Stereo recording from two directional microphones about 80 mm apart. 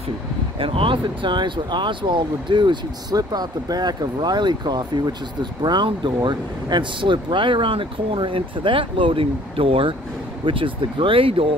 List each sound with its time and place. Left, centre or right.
0.6 s speech: right
3.2 s speech: right